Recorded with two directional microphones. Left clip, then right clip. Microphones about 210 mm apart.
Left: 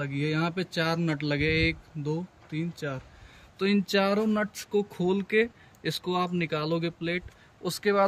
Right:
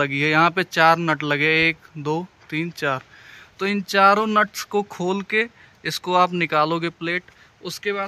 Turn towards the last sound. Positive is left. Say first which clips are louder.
# even
turn(degrees=25)  # may be behind; listen again after turning